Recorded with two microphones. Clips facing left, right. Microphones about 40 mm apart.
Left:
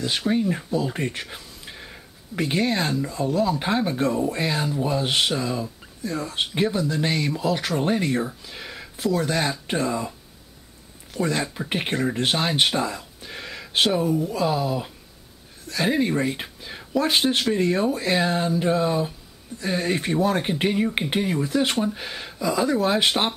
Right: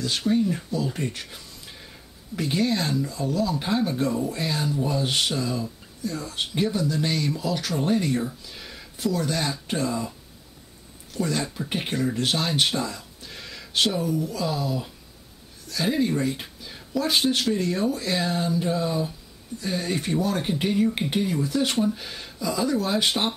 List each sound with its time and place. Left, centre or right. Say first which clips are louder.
0.3 s speech: even; left
1.3 s a sound: left 3 dB; left
3.0 s speech: left 3 dB; left
11.1 s speech: left 2 dB; left